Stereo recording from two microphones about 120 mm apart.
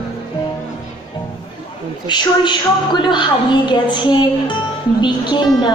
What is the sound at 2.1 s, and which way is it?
A woman's voice, 40° left (ahead or behind).